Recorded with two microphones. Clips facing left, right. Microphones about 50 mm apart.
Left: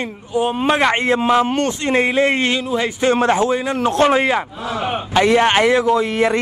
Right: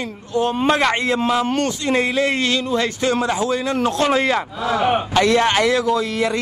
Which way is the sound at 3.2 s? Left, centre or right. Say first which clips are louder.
Left 5 dB; left.